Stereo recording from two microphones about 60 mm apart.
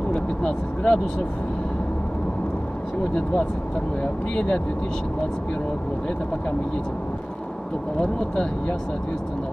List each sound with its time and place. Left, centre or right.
0.1 s speech: centre
4.0 s speech: centre
8.0 s speech: centre